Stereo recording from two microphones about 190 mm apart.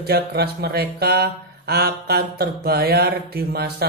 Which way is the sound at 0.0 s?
55° right (ahead or behind).